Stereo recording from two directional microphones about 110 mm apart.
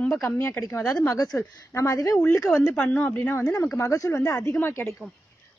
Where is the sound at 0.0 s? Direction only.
15° left (ahead or behind).